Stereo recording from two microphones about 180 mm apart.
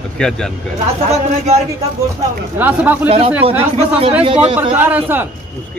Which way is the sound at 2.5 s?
10° right (ahead or behind).